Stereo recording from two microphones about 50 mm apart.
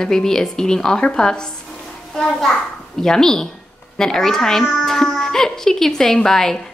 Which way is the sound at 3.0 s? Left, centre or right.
Centre.